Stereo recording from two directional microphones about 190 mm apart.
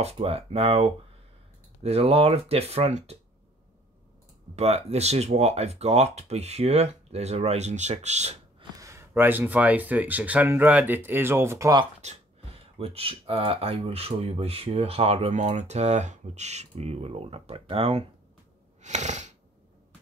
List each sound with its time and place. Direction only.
0.0 s speech: 30° right (ahead or behind)
4.6 s speech: 35° right (ahead or behind)
8.7 s speech: 15° right (ahead or behind)
11.8 s speech: 35° right (ahead or behind)
18.8 s a sound: 40° right (ahead or behind)